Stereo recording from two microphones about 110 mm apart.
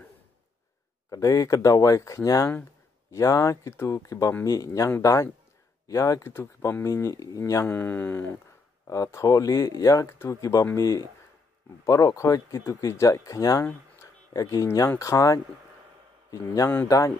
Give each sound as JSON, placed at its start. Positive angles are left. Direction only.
{"t": 1.1, "sound": "speech", "side_deg": 30}
{"t": 7.7, "sound": "speech", "side_deg": 20}
{"t": 16.5, "sound": "speech", "side_deg": 25}